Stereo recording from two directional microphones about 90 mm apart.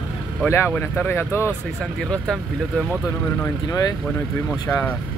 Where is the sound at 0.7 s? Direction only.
20° left (ahead or behind).